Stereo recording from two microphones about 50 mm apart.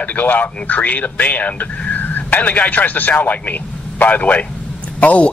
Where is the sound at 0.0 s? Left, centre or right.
Left.